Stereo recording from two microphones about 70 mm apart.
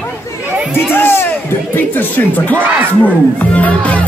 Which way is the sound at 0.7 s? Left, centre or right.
Left.